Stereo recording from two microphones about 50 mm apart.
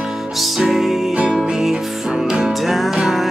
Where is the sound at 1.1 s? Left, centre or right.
Centre.